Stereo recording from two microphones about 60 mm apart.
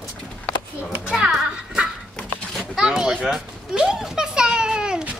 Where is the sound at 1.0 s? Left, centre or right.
Centre.